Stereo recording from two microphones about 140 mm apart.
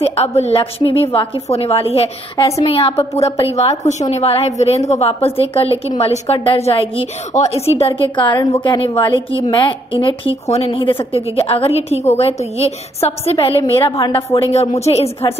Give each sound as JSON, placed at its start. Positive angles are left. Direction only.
{"t": 0.0, "sound": "a woman's voice", "side_deg": 50}